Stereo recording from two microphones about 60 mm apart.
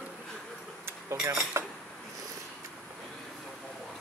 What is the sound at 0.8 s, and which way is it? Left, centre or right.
Dishes, right.